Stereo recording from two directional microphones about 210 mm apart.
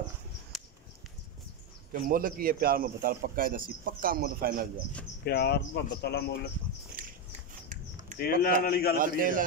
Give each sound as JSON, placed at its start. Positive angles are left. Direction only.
{"t": 0.5, "sound": "a sound", "side_deg": 0}
{"t": 1.9, "sound": "speech", "side_deg": -40}
{"t": 5.2, "sound": "speech", "side_deg": 50}
{"t": 7.0, "sound": "a sound", "side_deg": -40}
{"t": 8.2, "sound": "speech", "side_deg": 45}
{"t": 8.9, "sound": "a man's voice", "side_deg": -40}